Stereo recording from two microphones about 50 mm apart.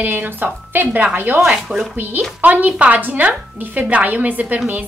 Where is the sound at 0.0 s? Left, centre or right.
Right.